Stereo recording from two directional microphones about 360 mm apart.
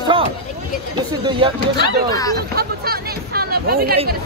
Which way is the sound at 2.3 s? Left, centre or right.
Right.